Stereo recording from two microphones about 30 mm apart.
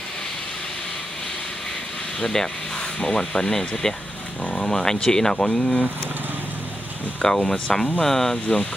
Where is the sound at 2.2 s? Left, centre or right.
Centre.